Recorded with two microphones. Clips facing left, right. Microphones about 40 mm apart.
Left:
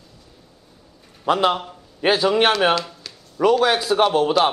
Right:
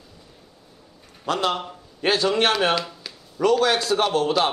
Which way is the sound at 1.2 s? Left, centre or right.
Centre.